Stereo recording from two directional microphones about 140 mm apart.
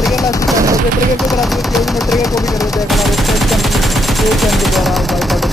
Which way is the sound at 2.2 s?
25° left (ahead or behind).